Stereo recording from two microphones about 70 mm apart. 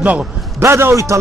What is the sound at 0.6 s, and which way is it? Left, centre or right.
Speech, right.